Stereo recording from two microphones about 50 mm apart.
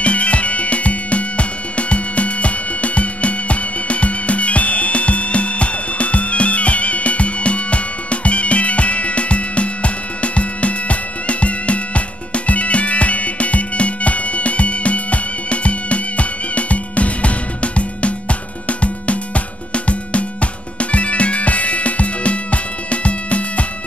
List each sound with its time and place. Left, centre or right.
0.0 s music: left